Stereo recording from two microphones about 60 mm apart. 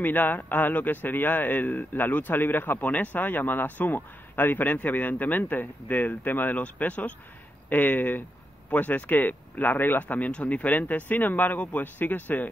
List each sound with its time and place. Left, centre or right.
0.0 s a man's voice: left